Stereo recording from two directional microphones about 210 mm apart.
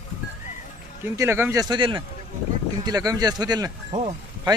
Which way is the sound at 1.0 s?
15° right (ahead or behind).